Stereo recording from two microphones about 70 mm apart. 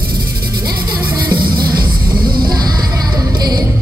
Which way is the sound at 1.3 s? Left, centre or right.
Right.